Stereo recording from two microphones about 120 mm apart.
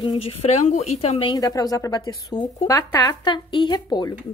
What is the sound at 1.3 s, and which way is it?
Speech, 30° left (ahead or behind).